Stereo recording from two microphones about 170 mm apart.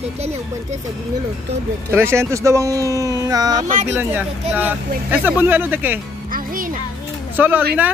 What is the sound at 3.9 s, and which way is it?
Speech, 10° right (ahead or behind).